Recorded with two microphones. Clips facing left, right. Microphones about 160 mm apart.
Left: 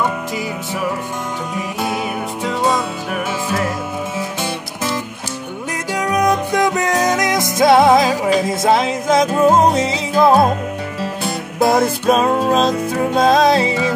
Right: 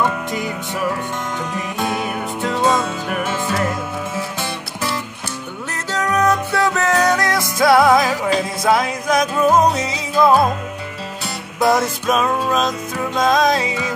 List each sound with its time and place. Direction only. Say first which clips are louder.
2.4 s music: right 1 dB; centre (ahead or behind)
6.5 s music: left 1 dB; 15° left (ahead or behind)
11.2 s music: left 1 dB; 55° left (ahead or behind)
12.1 s music: left 3 dB; 35° left (ahead or behind)